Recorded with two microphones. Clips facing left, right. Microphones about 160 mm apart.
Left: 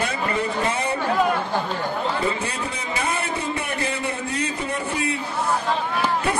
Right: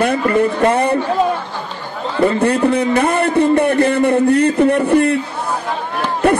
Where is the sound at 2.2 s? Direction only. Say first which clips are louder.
Right 12 dB; 60° right (ahead or behind).